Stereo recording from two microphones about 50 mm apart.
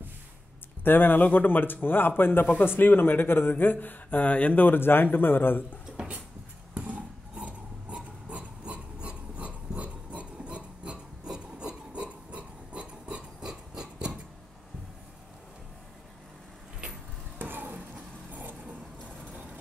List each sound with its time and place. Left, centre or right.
0.8 s speech: left
5.9 s a sound: right
7.9 s rub: right
11.3 s filing: centre
17.4 s a sound: right
18.3 s vehicle: right